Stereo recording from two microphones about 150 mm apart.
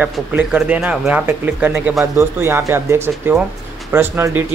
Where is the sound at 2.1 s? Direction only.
20° right (ahead or behind).